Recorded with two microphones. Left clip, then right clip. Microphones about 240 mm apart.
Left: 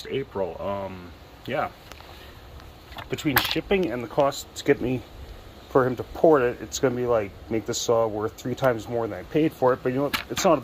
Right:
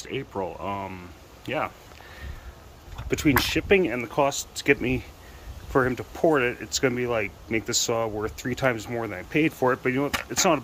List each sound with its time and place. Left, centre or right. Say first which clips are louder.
0.0 s speech: left 2 dB; centre
3.1 s speech: right 1 dB; centre
4.3 s speech: even; right
4.6 s speech: even; centre
5.7 s speech: left 2 dB; centre